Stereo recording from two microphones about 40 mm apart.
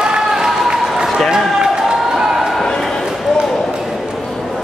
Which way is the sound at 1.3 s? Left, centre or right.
Centre.